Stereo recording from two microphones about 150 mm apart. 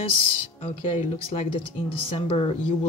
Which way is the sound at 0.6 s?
55° left (ahead or behind).